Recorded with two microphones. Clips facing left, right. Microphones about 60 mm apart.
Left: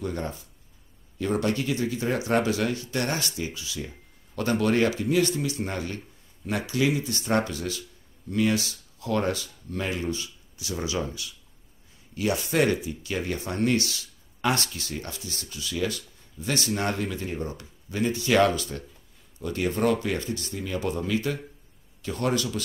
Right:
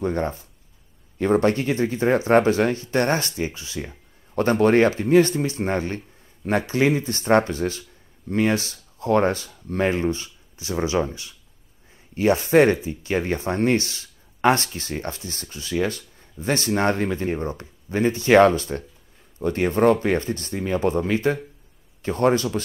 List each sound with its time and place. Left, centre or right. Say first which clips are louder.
0.0 s speech: right 7 dB; right